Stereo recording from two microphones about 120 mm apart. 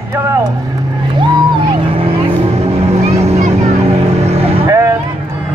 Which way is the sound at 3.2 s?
65° right (ahead or behind).